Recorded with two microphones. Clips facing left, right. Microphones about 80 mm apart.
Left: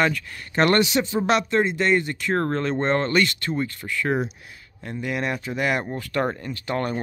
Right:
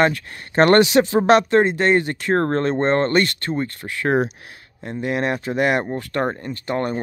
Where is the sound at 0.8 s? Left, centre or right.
Right.